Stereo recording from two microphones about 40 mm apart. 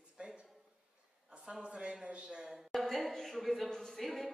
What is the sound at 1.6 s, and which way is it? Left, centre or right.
Speech, right.